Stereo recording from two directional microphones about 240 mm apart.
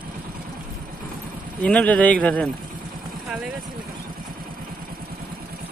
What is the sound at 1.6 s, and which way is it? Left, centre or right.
Speech, centre.